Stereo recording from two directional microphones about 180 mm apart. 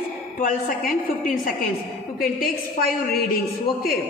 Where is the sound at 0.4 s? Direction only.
50° left (ahead or behind).